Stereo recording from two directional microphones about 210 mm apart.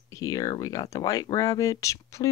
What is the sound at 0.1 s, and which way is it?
Speech, 15° left (ahead or behind).